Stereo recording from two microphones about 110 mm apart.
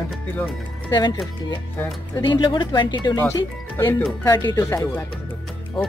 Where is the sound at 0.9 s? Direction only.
40° left (ahead or behind).